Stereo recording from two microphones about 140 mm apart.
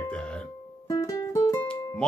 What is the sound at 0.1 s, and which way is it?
Music, 5° left (ahead or behind).